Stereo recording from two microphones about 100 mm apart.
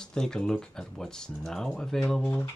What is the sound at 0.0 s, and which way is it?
Speech, 5° left (ahead or behind).